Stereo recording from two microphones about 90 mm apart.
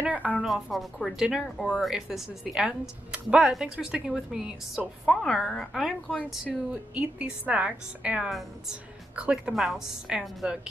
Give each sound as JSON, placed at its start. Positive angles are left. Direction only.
{"t": 0.0, "sound": "a woman's voice", "side_deg": -15}
{"t": 0.4, "sound": "a woman's voice", "side_deg": 0}
{"t": 8.3, "sound": "a woman's voice", "side_deg": 0}